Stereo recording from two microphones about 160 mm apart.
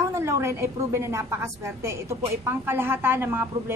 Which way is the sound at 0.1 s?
15° right (ahead or behind).